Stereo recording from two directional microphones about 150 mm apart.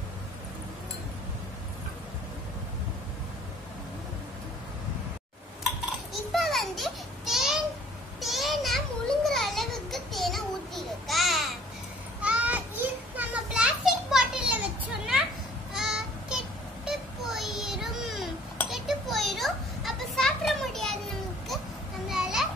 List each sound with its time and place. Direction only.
6.3 s a sound: centre (ahead or behind)
12.2 s children playing: 10° right (ahead or behind)
15.7 s child singing: 5° right (ahead or behind)
18.7 s children playing: centre (ahead or behind)
22.0 s children playing: 5° right (ahead or behind)